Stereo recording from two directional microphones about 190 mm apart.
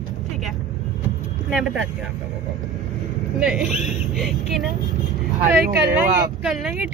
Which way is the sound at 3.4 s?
5° right (ahead or behind).